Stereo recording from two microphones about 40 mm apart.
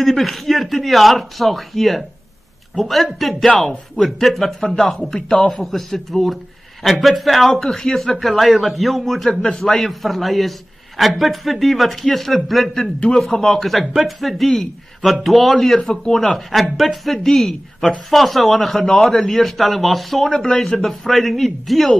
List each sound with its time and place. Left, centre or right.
0.0 s a man's voice: centre
4.6 s a man's voice: centre
7.6 s a man's voice: centre
9.3 s speech: left
9.6 s a man's voice: centre
20.2 s speech: centre
20.8 s a man's voice: centre